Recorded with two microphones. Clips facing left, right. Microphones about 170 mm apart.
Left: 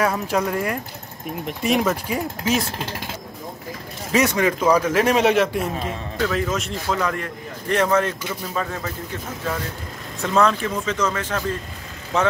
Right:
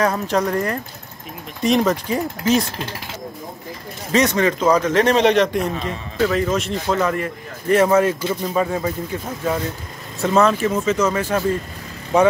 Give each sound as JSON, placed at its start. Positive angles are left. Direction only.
{"t": 0.0, "sound": "a man's voice", "side_deg": 5}
{"t": 4.1, "sound": "a man's voice", "side_deg": 10}
{"t": 10.3, "sound": "a man's voice", "side_deg": -5}